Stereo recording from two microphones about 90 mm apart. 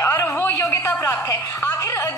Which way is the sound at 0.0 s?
35° left (ahead or behind).